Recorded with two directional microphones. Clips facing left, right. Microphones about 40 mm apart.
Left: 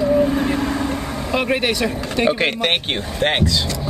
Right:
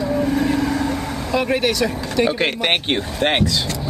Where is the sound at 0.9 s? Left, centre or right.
Centre.